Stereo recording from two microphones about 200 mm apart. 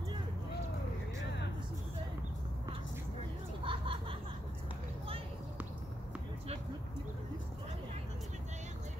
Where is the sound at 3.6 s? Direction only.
25° right (ahead or behind).